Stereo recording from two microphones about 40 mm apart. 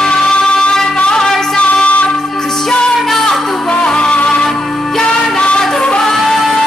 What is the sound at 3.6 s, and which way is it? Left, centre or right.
Music, left.